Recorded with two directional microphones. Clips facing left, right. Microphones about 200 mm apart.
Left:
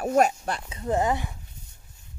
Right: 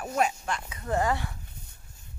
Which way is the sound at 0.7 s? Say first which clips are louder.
Left 3 dB; 20° left (ahead or behind).